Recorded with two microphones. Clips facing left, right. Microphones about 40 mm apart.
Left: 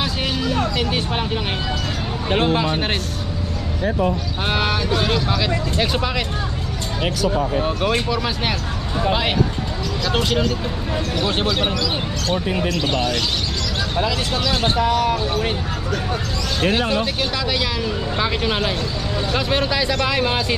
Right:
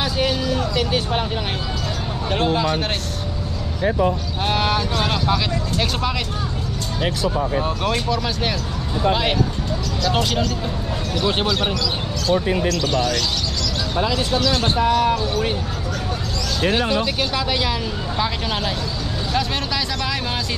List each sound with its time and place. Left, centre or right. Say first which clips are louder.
0.0 s vehicle: right 2 dB; centre
0.7 s speech: right 1 dB; centre
2.3 s speech: left 1 dB; left
4.5 s speech: even; centre
7.6 s speech: left 2 dB; centre
10.0 s speech: left 1 dB; centre
12.6 s speech: even; left
16.6 s speech: even; left
17.2 s speech: even; centre
18.2 s speech: left 2 dB; centre